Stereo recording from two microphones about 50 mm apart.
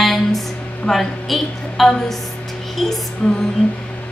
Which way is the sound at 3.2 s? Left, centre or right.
Centre.